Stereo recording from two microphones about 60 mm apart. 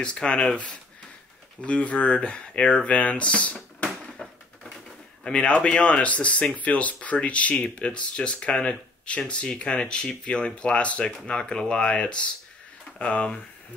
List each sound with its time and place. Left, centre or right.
0.0 s speech: centre